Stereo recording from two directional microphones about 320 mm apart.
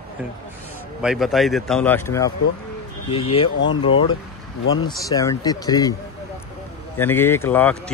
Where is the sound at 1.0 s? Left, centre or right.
Centre.